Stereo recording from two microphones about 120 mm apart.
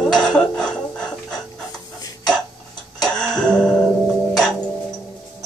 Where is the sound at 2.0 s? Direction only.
35° left (ahead or behind).